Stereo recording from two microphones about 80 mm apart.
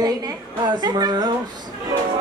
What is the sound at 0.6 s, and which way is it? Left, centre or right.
Speech, right.